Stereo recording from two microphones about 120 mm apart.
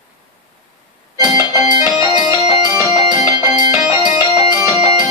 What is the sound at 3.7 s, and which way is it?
Music, 25° right (ahead or behind).